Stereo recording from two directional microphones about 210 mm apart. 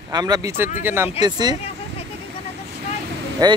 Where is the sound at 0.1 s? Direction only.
20° right (ahead or behind).